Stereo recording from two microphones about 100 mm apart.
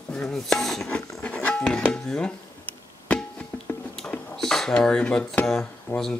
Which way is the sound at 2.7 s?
10° left (ahead or behind).